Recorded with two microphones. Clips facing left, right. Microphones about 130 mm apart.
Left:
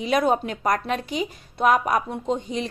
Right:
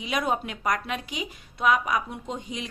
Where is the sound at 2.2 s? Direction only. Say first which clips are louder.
Left 8 dB; 30° left (ahead or behind).